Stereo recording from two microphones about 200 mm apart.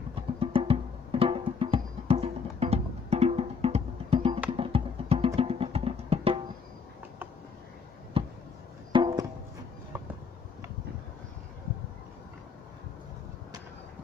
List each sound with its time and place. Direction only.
0.1 s music: 25° right (ahead or behind)
8.2 s a sound: 30° right (ahead or behind)
8.9 s music: 20° right (ahead or behind)